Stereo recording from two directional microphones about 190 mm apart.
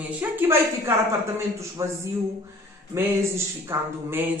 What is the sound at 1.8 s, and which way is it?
A man's voice, 15° right (ahead or behind).